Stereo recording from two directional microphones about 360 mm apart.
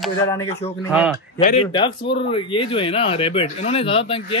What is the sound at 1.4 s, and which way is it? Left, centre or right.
A man's voice, centre.